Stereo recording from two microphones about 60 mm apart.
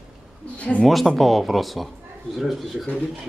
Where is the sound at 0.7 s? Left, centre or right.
Centre.